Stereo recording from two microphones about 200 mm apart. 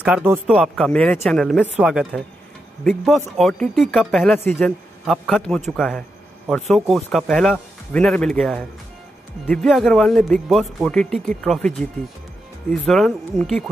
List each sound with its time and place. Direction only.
0.0 s speech: 10° right (ahead or behind)
12.8 s speech: centre (ahead or behind)